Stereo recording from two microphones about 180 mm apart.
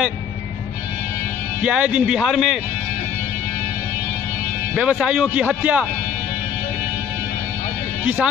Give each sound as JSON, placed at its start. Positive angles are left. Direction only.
{"t": 1.6, "sound": "a man's voice", "side_deg": -5}
{"t": 4.7, "sound": "a man's voice", "side_deg": -5}
{"t": 8.0, "sound": "speech", "side_deg": -5}